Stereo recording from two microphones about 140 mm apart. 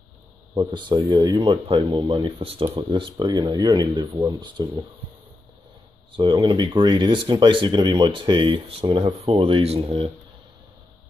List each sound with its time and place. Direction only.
0.6 s a man's voice: 30° right (ahead or behind)
6.1 s a man's voice: 30° right (ahead or behind)